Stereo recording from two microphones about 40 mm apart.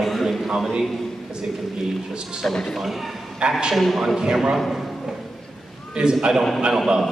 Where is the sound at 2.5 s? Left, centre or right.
Centre.